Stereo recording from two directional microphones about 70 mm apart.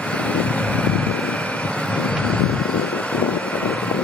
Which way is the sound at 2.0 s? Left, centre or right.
Centre.